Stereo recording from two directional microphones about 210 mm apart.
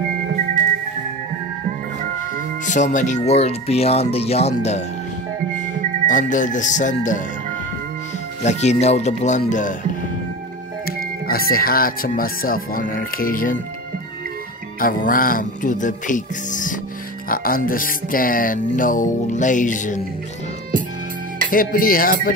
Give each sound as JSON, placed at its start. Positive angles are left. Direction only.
{"t": 2.6, "sound": "speech", "side_deg": 35}
{"t": 6.0, "sound": "speech", "side_deg": 40}
{"t": 8.5, "sound": "speech", "side_deg": 30}
{"t": 11.2, "sound": "speech", "side_deg": 45}
{"t": 14.8, "sound": "speech", "side_deg": 40}
{"t": 21.5, "sound": "speech", "side_deg": 40}